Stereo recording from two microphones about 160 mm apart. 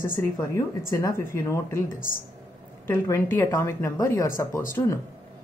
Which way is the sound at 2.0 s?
60° left (ahead or behind).